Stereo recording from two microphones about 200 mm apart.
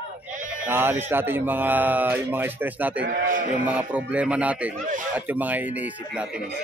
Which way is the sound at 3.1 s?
40° right (ahead or behind).